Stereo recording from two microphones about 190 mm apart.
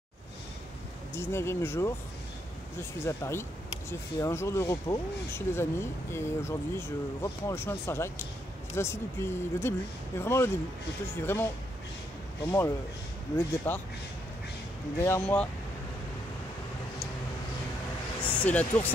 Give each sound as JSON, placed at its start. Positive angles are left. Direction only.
{"t": 1.1, "sound": "speech", "side_deg": 15}
{"t": 3.0, "sound": "speech", "side_deg": 15}
{"t": 15.0, "sound": "speech", "side_deg": 15}
{"t": 18.2, "sound": "speech", "side_deg": 5}